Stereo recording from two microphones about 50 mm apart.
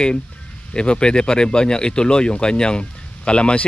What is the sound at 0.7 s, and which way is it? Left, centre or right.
Speech, centre.